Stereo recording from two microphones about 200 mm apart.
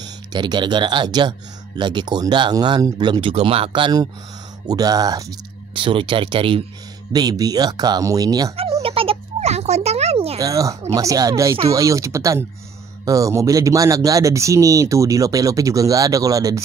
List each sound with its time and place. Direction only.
0.3 s speech: 20° right (ahead or behind)
8.8 s a sound: 30° right (ahead or behind)
10.4 s speech: 15° right (ahead or behind)